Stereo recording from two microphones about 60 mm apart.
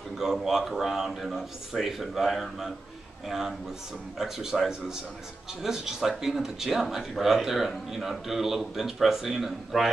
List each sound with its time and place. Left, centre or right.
0.2 s speech: centre